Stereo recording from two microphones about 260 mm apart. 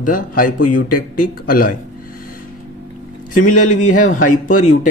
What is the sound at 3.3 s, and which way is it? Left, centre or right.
Speech, left.